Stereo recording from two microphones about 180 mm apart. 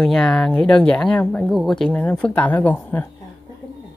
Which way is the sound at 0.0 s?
5° left (ahead or behind).